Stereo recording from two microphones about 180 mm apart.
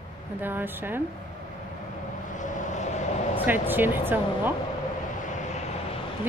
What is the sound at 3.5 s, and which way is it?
Speech, 10° right (ahead or behind).